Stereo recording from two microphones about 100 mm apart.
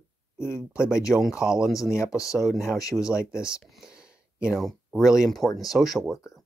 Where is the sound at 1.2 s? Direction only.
5° right (ahead or behind).